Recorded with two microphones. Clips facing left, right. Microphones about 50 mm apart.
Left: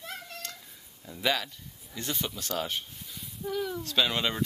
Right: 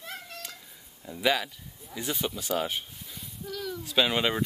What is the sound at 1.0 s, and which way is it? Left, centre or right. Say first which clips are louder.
Speech: right 3 dB; centre.